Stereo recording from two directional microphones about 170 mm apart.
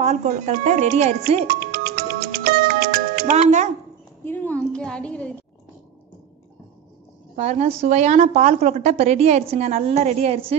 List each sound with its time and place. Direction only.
0.0 s speech: 40° right (ahead or behind)
1.5 s music: 55° right (ahead or behind)
4.2 s a woman's voice: 10° left (ahead or behind)
7.3 s a woman's voice: 40° right (ahead or behind)